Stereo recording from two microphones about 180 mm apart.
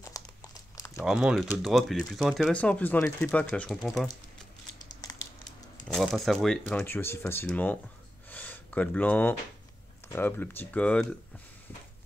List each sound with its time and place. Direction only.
0.0 s crumpling: 20° left (ahead or behind)
1.0 s speech: 5° right (ahead or behind)
5.4 s speech: centre (ahead or behind)
8.3 s a sound: 10° left (ahead or behind)
10.0 s speech: 10° left (ahead or behind)